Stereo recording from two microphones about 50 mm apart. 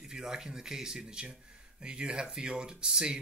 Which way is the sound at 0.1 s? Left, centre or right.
Centre.